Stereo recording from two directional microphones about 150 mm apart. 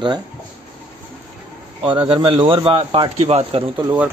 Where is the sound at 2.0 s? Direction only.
35° right (ahead or behind).